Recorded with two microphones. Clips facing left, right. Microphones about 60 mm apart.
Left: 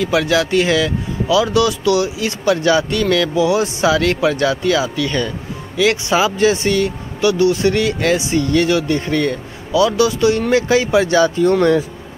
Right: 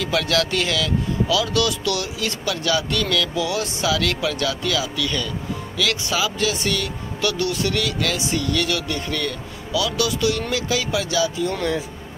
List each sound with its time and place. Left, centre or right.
0.0 s a man's voice: centre
11.2 s speech: left